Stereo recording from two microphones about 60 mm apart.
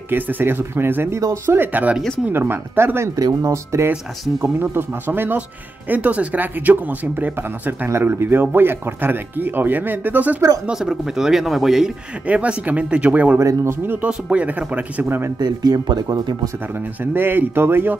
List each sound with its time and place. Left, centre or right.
0.1 s speech: right
3.2 s speech: right
4.4 s speech: right
10.7 s speech: centre
12.3 s speech: right
13.4 s speech: right
14.0 s speech: right
15.0 s speech: right
15.6 s speech: right
17.0 s speech: right